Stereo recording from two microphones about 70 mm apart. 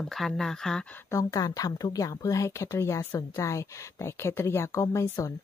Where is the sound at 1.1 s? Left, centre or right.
Left.